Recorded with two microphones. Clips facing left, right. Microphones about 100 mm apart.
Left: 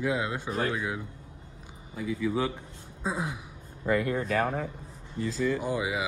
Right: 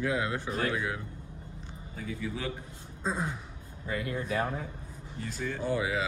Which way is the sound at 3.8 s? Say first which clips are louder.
Left 8 dB; 80° left.